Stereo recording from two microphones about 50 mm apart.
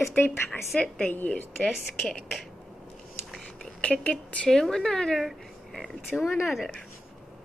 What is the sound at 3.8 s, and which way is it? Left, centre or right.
Speech, left.